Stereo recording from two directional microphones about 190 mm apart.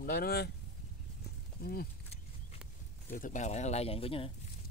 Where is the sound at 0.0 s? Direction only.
55° left (ahead or behind).